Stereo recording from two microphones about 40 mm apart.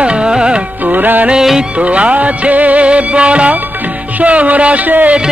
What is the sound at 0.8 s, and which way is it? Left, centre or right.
Music, right.